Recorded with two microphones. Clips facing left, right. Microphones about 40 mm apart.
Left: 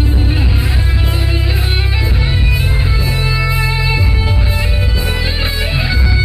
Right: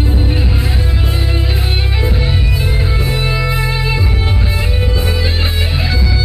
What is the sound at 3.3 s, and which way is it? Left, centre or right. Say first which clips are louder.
Music: left 1 dB; centre.